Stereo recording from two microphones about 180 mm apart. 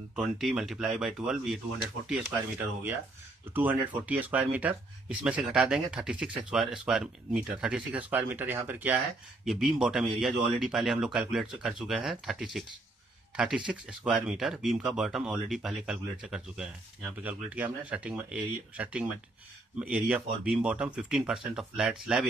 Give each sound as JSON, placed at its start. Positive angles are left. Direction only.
{"t": 0.1, "sound": "speech", "side_deg": 0}
{"t": 13.7, "sound": "speech", "side_deg": -5}